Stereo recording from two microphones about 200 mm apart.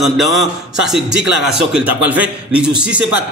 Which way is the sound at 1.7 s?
10° right (ahead or behind).